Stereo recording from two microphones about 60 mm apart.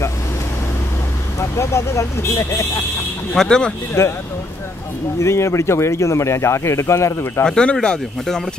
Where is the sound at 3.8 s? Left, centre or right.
Left.